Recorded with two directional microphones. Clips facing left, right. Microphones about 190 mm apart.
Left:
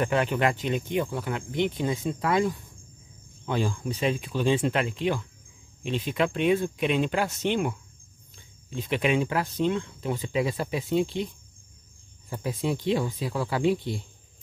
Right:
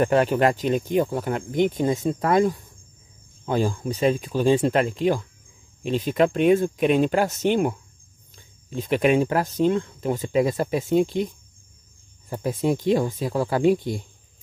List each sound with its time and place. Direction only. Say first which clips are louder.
0.0 s speech: right 6 dB; 40° right (ahead or behind)
12.3 s speech: right 5 dB; 45° right (ahead or behind)